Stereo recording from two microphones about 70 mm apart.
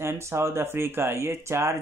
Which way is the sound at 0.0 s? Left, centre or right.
Right.